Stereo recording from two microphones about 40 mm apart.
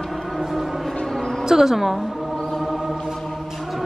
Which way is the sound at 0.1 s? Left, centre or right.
Centre.